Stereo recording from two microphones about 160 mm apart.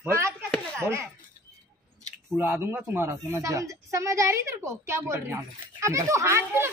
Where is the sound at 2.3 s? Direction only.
15° right (ahead or behind).